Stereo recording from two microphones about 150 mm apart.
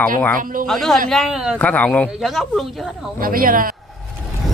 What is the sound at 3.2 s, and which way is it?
Speech, 70° right (ahead or behind).